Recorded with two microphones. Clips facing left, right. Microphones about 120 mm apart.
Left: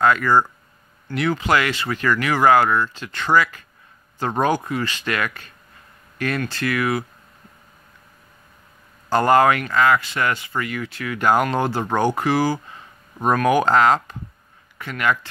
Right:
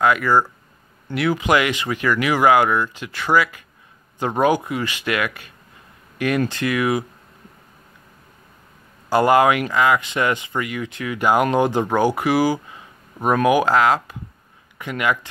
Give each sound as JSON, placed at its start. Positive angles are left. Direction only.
{"t": 0.0, "sound": "speech", "side_deg": -10}
{"t": 1.4, "sound": "speech", "side_deg": -15}
{"t": 9.1, "sound": "speech", "side_deg": -10}